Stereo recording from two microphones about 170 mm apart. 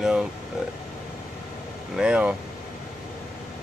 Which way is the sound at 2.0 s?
5° right (ahead or behind).